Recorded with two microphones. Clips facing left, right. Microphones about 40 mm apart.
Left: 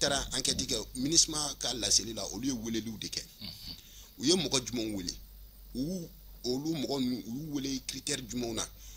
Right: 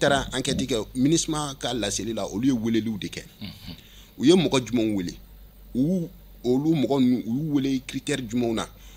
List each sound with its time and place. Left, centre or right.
0.0 s speech: right